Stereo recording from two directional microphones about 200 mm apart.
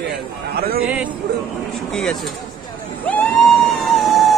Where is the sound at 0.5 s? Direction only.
50° right (ahead or behind).